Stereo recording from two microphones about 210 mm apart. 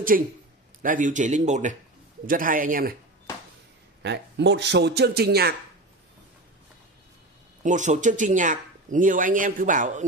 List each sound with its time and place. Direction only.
0.1 s a man's voice: 40° right (ahead or behind)
4.0 s speech: 55° right (ahead or behind)
7.6 s a man's voice: 35° right (ahead or behind)